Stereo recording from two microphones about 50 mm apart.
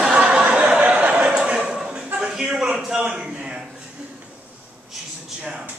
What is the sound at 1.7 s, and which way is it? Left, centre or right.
Chuckle, centre.